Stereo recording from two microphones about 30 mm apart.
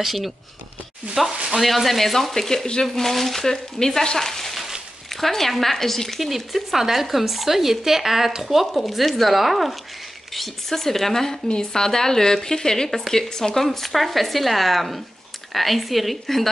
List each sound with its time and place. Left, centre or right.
0.0 s speech: centre
2.3 s speech: centre
3.0 s speech: centre
3.4 s speech: centre
4.2 s a sound: centre
5.1 s speech: centre
11.4 s speech: left
13.6 s speech: centre